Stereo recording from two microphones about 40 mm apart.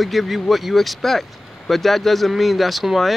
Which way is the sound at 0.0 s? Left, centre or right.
Centre.